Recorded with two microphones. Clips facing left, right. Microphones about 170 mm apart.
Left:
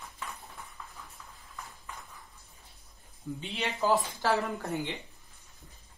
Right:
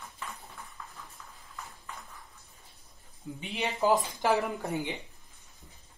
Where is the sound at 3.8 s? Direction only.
15° right (ahead or behind).